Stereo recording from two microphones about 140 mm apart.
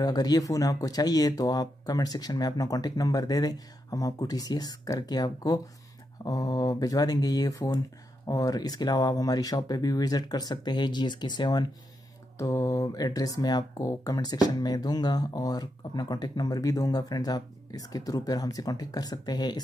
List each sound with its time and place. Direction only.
0.0 s speech: 30° left (ahead or behind)